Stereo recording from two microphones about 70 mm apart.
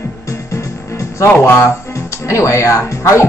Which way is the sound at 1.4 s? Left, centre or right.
Left.